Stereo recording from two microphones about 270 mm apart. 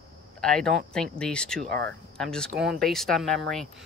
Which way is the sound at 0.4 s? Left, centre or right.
Centre.